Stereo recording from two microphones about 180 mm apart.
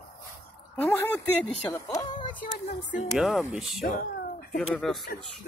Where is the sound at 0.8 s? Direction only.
10° left (ahead or behind); by 2.7 s 25° left (ahead or behind).